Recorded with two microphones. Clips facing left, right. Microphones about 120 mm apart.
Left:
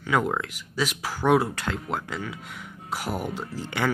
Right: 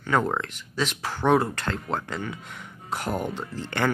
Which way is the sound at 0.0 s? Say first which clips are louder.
Even; 5° left (ahead or behind).